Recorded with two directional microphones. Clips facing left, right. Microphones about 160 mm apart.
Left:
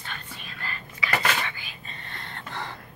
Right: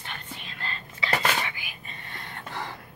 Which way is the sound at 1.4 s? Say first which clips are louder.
Even; 15° right (ahead or behind).